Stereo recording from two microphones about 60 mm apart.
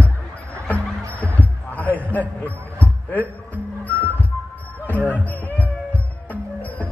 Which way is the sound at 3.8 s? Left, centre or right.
Left.